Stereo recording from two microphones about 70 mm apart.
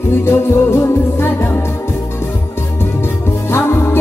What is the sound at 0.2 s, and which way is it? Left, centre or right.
Music, left.